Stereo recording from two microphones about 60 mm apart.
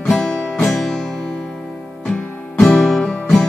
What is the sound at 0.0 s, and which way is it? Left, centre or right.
Music, centre.